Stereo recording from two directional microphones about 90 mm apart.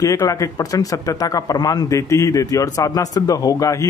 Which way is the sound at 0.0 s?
35° left (ahead or behind).